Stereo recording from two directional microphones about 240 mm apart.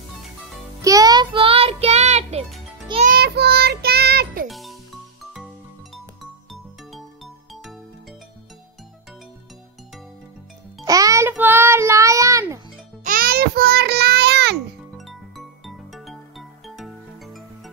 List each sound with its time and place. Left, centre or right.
0.8 s music: centre
3.2 s child singing: right
4.5 s music: centre
6.5 s music: centre
10.9 s child singing: centre
13.0 s music: right
15.0 s music: centre